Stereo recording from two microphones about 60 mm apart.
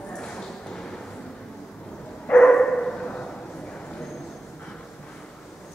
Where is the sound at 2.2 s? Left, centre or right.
Centre.